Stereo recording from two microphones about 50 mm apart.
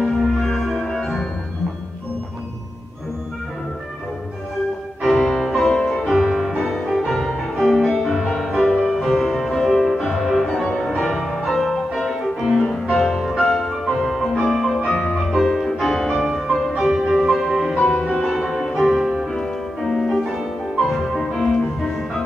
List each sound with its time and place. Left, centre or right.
0.0 s music: centre
5.0 s music: centre
5.8 s music: centre
6.0 s music: centre
6.6 s music: centre
8.5 s music: centre
10.4 s music: centre
14.8 s music: centre
15.3 s music: centre
17.7 s music: centre
19.2 s music: centre